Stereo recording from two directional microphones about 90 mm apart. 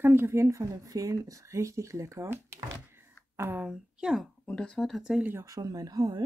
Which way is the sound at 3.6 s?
10° right (ahead or behind).